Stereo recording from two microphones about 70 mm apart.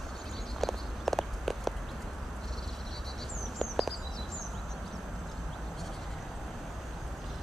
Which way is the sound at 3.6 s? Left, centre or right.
Centre.